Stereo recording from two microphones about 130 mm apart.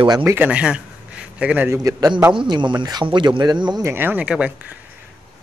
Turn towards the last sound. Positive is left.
turn(degrees=-10)  # may be behind; listen again after turning